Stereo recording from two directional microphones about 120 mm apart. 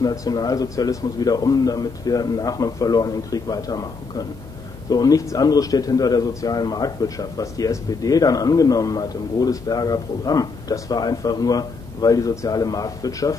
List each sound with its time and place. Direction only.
0.0 s a man's voice: 30° left (ahead or behind)